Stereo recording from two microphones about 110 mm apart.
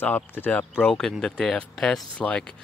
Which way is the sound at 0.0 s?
15° left (ahead or behind).